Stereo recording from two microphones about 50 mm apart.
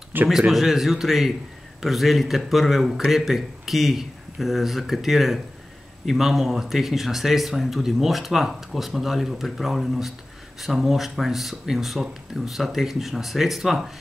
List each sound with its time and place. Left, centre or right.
0.3 s speech: centre